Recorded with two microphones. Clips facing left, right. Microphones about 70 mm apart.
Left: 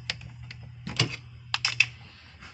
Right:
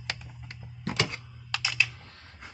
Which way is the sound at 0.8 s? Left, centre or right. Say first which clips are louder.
Right 2 dB; right.